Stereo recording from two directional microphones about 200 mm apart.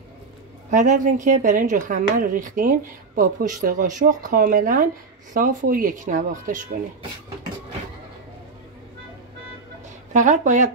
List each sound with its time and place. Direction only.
0.7 s a woman's voice: 40° right (ahead or behind)
10.1 s a woman's voice: 40° right (ahead or behind)